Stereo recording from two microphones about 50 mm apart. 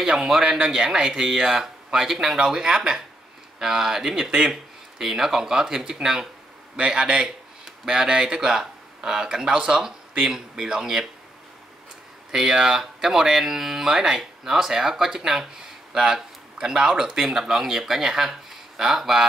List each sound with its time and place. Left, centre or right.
0.0 s speech: centre
12.3 s speech: centre